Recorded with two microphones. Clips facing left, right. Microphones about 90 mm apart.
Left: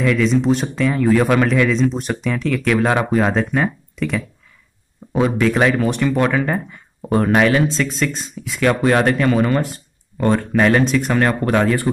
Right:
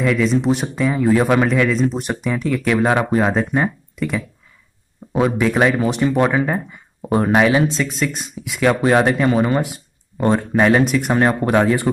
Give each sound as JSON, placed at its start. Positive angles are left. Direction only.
{"t": 0.0, "sound": "speech", "side_deg": -10}
{"t": 5.2, "sound": "speech", "side_deg": -10}
{"t": 6.4, "sound": "speech", "side_deg": -5}
{"t": 7.1, "sound": "speech", "side_deg": -20}